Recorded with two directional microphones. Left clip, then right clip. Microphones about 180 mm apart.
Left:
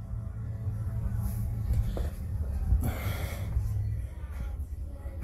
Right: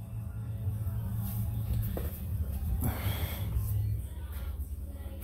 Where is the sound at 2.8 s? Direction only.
15° right (ahead or behind).